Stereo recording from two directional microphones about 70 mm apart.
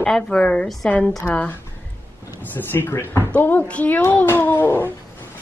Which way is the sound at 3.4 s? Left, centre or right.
Left.